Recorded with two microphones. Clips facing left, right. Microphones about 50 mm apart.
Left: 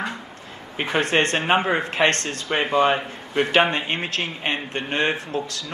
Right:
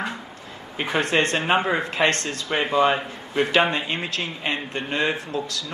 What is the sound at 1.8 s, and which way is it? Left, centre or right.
A man's voice, left.